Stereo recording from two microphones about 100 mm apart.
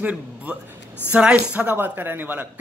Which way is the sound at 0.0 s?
15° right (ahead or behind).